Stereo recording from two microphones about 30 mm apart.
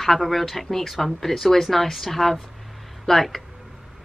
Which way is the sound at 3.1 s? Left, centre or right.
Centre.